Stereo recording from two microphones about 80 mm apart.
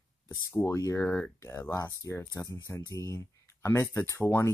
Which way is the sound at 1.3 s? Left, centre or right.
Left.